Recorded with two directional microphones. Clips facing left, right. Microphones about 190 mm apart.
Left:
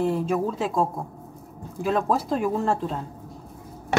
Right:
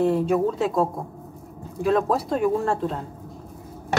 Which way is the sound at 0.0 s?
Centre (ahead or behind).